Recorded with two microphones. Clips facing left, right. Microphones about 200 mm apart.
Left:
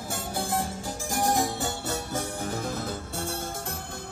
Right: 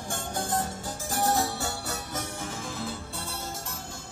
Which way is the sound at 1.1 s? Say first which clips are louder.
Left 1 dB; 15° left (ahead or behind).